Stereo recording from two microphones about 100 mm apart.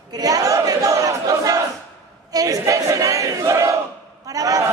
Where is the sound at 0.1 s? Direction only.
40° right (ahead or behind).